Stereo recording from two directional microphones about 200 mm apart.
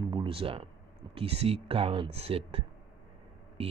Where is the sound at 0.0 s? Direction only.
25° right (ahead or behind).